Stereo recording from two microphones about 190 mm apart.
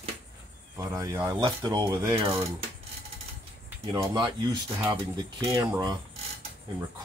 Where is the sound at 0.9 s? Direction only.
20° right (ahead or behind).